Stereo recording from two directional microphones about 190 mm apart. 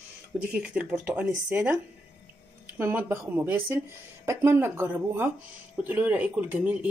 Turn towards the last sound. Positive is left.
turn(degrees=-10)  # may be behind; listen again after turning